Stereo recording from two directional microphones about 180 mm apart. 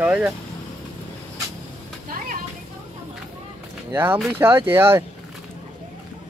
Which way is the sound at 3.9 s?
10° right (ahead or behind).